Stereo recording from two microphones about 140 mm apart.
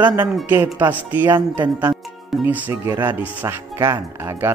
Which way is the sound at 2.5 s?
10° right (ahead or behind).